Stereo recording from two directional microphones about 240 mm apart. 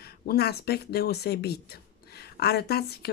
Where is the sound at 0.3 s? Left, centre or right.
Left.